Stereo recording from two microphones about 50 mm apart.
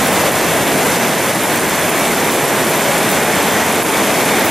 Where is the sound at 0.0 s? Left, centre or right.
Centre.